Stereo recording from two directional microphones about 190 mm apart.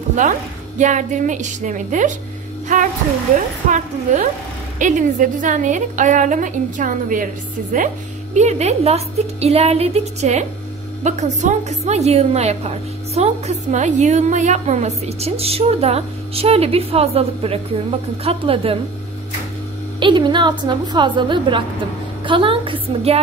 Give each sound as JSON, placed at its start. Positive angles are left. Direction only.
{"t": 0.1, "sound": "a woman's voice", "side_deg": -40}
{"t": 3.7, "sound": "a woman's voice", "side_deg": -40}
{"t": 20.0, "sound": "a woman's voice", "side_deg": -25}